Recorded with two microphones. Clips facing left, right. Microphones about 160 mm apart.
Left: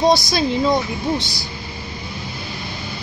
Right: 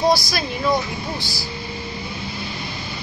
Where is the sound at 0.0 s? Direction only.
20° left (ahead or behind).